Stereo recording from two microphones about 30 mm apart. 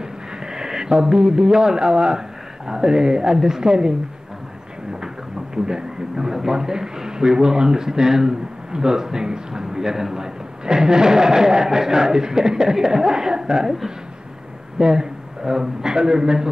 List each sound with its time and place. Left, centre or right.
0.0 s speech: centre
5.0 s speech: right
9.8 s a man's voice: centre